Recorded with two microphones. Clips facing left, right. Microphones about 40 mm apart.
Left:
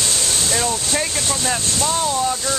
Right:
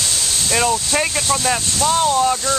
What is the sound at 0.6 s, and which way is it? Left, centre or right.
Speech, right.